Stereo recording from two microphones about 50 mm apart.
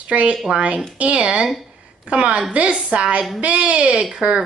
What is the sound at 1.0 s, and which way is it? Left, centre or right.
Speech, right.